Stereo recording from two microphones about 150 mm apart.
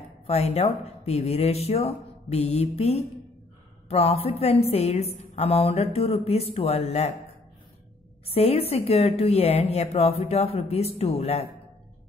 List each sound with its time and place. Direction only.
0.3 s a woman's voice: 45° left (ahead or behind)
8.3 s a woman's voice: 40° left (ahead or behind)